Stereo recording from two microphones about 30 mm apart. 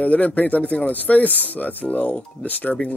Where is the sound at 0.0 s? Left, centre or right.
Left.